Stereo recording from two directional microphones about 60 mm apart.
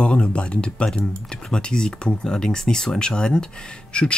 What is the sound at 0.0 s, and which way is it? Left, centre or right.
Speech, centre.